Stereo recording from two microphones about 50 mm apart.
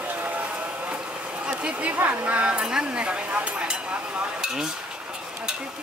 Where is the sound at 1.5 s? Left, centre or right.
Right.